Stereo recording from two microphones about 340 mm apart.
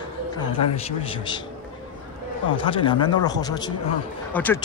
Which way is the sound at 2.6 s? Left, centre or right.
Centre.